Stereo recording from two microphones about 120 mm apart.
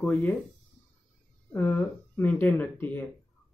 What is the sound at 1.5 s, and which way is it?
Speech, 15° left (ahead or behind).